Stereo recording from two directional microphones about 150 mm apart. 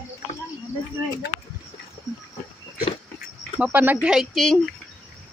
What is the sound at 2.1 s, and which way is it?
Pig, 5° right (ahead or behind).